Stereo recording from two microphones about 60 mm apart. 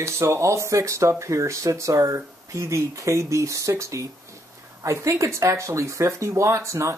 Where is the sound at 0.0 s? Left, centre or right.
Right.